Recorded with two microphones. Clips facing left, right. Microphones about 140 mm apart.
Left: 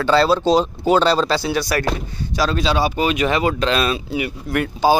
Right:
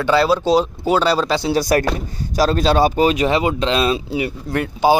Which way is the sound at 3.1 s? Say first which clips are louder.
Right 2 dB; 30° right (ahead or behind).